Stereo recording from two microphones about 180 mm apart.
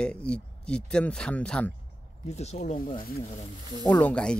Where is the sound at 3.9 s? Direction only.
10° left (ahead or behind).